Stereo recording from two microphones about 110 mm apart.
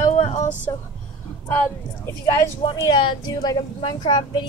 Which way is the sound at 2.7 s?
35° left (ahead or behind).